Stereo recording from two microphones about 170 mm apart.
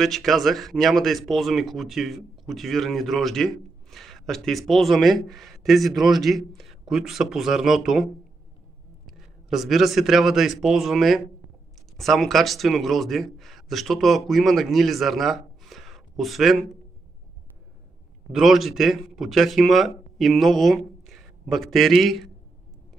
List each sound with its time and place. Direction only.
0.0 s a man's voice: centre (ahead or behind)
18.3 s speech: centre (ahead or behind)